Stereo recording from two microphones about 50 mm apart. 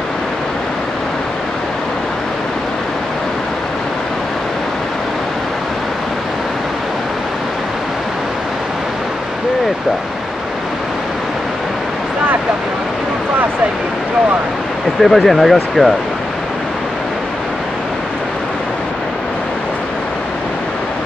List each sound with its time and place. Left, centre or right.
15.0 s speech: centre